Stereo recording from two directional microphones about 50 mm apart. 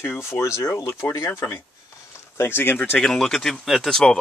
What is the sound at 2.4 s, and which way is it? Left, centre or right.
Speech, left.